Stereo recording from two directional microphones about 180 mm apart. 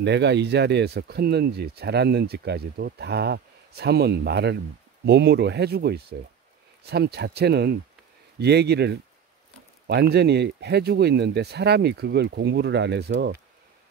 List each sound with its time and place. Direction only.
0.0 s speech: 70° right (ahead or behind)